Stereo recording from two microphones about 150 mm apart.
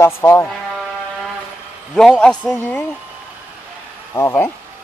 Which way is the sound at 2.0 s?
5° left (ahead or behind).